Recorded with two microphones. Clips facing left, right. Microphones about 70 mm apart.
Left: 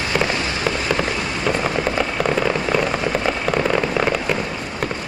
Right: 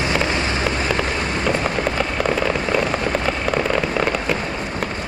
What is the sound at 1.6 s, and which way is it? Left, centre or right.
Fireworks, centre.